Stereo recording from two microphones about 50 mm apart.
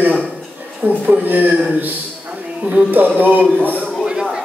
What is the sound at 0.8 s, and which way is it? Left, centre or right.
Speech, right.